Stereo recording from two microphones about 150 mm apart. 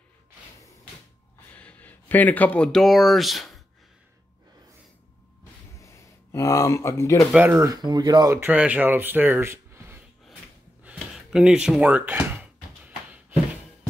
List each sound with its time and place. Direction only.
1.5 s speech: 10° left (ahead or behind)
5.8 s a sound: 20° left (ahead or behind)
7.3 s speech: 10° right (ahead or behind)
7.7 s speech: 30° right (ahead or behind)
8.4 s speech: 10° right (ahead or behind)
10.8 s a sound: 5° right (ahead or behind)